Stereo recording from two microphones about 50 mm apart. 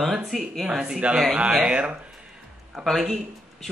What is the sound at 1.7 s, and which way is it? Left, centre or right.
Speech, right.